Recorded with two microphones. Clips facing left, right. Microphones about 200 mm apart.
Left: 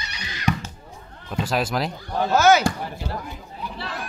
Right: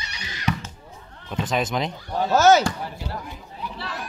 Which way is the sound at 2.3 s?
40° right (ahead or behind).